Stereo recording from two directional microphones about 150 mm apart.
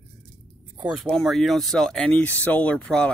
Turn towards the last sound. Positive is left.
turn(degrees=5)  # may be behind; listen again after turning